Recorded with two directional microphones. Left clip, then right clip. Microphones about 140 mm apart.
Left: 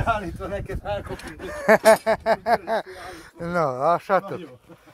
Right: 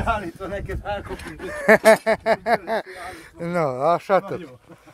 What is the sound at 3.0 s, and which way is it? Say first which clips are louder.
Speech: right 2 dB; 10° right (ahead or behind).